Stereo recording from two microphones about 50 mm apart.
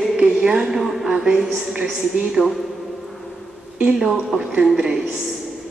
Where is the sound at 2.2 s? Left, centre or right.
Centre.